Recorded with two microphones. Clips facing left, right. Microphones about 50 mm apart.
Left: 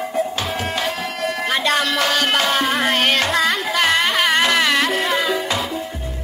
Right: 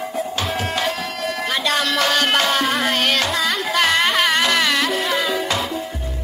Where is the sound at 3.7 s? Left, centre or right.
Centre.